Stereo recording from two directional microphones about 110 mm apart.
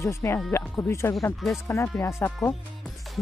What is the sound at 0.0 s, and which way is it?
Speech, 25° left (ahead or behind).